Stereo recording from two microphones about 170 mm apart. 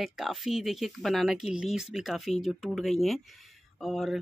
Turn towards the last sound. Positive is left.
turn(degrees=0)  # may be behind; listen again after turning